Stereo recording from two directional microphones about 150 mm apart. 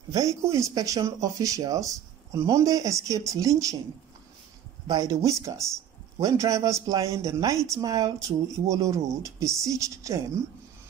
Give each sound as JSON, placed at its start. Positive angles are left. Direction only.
{"t": 0.1, "sound": "speech", "side_deg": -20}
{"t": 4.8, "sound": "speech", "side_deg": -25}